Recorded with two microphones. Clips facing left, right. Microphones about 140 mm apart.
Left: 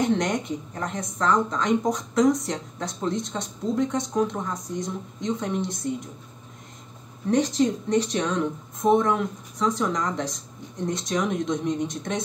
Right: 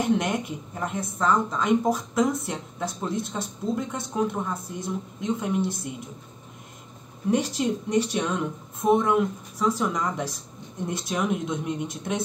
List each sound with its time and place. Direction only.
0.0 s a woman's voice: 5° right (ahead or behind)
7.2 s a woman's voice: 10° right (ahead or behind)